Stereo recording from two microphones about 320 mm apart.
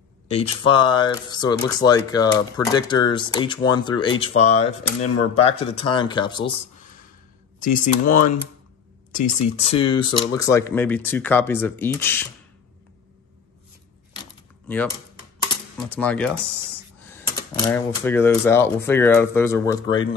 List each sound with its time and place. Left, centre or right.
0.3 s speech: centre
14.7 s speech: centre